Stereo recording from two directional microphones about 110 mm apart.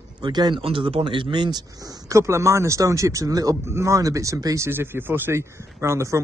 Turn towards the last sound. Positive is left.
turn(degrees=-25)  # may be behind; listen again after turning